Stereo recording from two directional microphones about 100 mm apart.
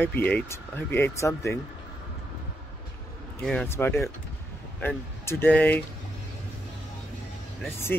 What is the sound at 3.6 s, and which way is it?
Speech, 20° left (ahead or behind).